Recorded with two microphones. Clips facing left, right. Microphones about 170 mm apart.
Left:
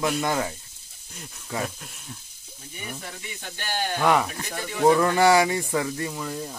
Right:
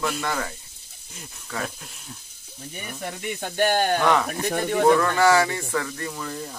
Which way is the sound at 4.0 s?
10° left (ahead or behind).